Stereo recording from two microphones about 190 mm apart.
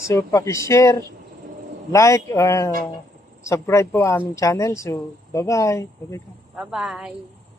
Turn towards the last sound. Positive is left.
turn(degrees=-5)  # may be behind; listen again after turning